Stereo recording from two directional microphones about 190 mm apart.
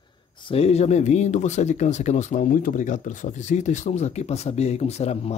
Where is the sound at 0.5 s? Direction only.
35° left (ahead or behind).